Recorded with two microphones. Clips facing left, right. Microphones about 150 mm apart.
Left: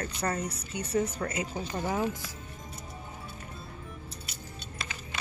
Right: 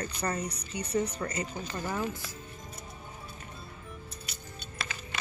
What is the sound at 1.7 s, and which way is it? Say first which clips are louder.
Speech: left 4 dB; 15° left (ahead or behind).